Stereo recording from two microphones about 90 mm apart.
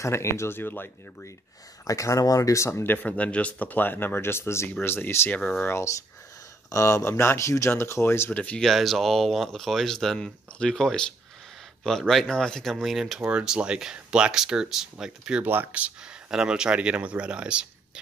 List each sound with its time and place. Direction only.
0.0 s speech: 30° left (ahead or behind)
1.9 s speech: 40° left (ahead or behind); by 8.6 s 15° left (ahead or behind)
8.6 s speech: centre (ahead or behind)
13.2 s speech: 15° right (ahead or behind)
15.4 s speech: 20° right (ahead or behind)